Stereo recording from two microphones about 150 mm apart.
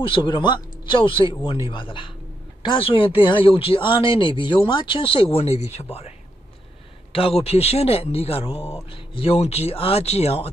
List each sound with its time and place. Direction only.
0.0 s speech: 35° left (ahead or behind)